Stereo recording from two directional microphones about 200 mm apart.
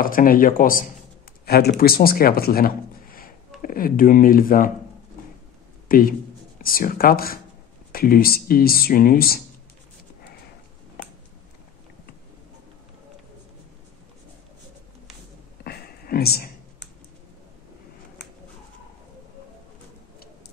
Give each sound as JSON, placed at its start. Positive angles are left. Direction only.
{"t": 0.0, "sound": "speech", "side_deg": 45}
{"t": 5.9, "sound": "speech", "side_deg": 45}
{"t": 15.6, "sound": "a sound", "side_deg": 50}